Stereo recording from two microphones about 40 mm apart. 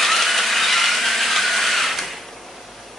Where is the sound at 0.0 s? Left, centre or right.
Centre.